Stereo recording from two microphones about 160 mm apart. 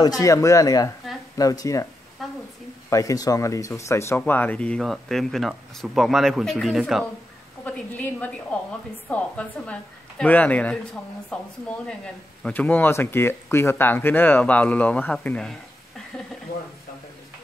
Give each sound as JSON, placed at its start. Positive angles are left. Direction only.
{"t": 0.0, "sound": "speech", "side_deg": 20}
{"t": 2.9, "sound": "speech", "side_deg": 20}
{"t": 7.6, "sound": "speech", "side_deg": 10}
{"t": 12.4, "sound": "speech", "side_deg": 10}